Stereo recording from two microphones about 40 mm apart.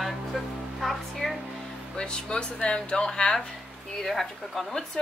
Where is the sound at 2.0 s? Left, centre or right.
Left.